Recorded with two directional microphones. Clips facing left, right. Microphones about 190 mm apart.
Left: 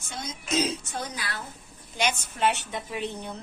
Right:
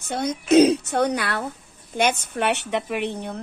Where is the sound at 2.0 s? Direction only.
60° right (ahead or behind).